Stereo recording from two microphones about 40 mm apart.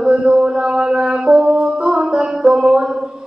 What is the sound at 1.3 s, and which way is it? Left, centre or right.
Music, centre.